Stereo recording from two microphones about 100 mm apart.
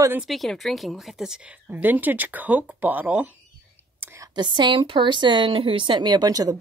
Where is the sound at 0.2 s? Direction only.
Centre (ahead or behind); by 3.3 s 15° right (ahead or behind).